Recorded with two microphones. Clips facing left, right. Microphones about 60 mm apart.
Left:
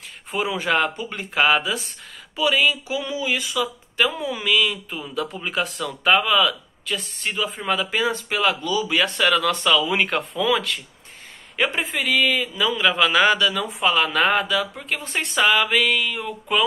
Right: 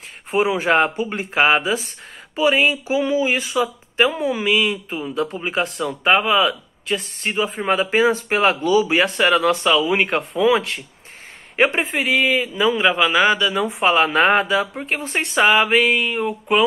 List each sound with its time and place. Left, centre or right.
0.3 s speech: right
0.9 s speech: centre
1.4 s speech: right
3.9 s a sound: right
4.4 s speech: right
5.6 s speech: centre
6.0 s speech: right
11.9 s speech: centre
12.7 s speech: right
13.7 s speech: right